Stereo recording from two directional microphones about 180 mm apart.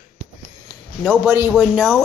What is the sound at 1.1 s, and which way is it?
Speech, 10° right (ahead or behind).